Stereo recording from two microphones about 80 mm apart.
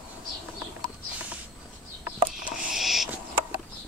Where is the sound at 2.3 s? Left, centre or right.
Centre.